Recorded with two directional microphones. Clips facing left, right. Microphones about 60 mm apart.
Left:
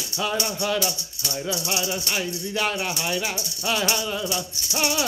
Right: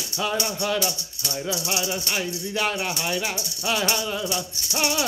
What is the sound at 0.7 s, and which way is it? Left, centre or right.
Speech, right.